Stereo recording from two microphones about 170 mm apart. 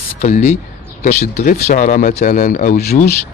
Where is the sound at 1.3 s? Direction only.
50° left (ahead or behind).